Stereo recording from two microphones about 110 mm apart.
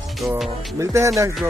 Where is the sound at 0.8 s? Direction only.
25° right (ahead or behind).